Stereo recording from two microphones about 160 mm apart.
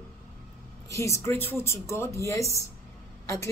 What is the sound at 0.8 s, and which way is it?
A woman's voice, 20° left (ahead or behind).